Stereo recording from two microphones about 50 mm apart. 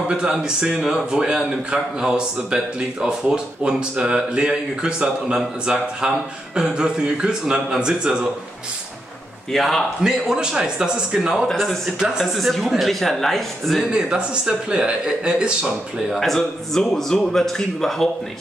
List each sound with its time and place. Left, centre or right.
0.1 s speech: centre
9.5 s speech: centre
10.0 s speech: centre
12.4 s speech: centre
13.8 s speech: centre
16.2 s a man's voice: centre